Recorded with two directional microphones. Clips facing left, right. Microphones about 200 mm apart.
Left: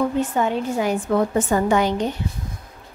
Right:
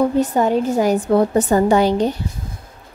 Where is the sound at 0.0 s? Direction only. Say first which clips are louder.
Right 4 dB; 40° right (ahead or behind).